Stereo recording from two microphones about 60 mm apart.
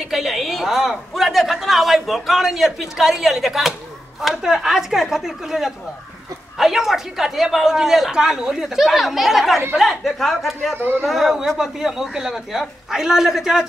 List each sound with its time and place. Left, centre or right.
0.1 s a woman's voice: centre
10.8 s speech: right
11.1 s a woman's voice: centre